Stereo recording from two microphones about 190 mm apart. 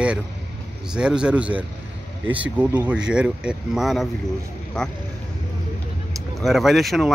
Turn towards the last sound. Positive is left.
turn(degrees=0)  # may be behind; listen again after turning